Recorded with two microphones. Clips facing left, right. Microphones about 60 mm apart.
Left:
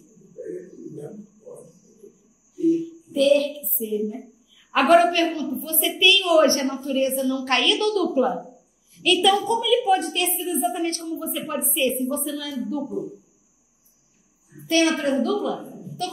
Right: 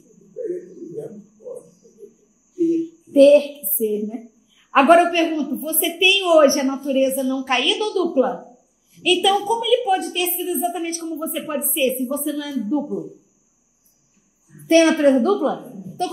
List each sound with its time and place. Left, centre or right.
3.1 s a woman's voice: right; by 12.4 s centre
14.7 s a woman's voice: right
16.0 s music: right